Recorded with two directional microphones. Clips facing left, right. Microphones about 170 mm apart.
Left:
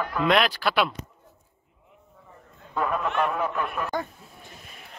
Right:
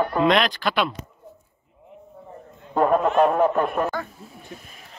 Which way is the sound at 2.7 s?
45° right (ahead or behind).